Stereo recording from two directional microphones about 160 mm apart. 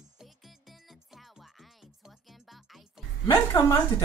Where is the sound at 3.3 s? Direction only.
15° left (ahead or behind).